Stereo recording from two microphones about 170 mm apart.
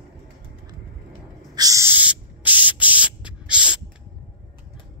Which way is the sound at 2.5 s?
10° right (ahead or behind).